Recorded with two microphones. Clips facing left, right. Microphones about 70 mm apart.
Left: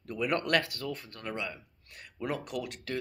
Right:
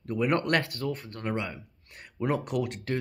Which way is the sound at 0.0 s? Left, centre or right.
Right.